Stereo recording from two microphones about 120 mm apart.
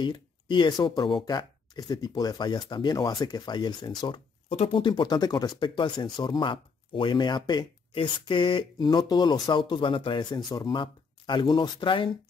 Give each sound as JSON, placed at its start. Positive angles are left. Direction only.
{"t": 0.0, "sound": "speech", "side_deg": 40}
{"t": 4.5, "sound": "speech", "side_deg": 60}
{"t": 4.8, "sound": "speech", "side_deg": 40}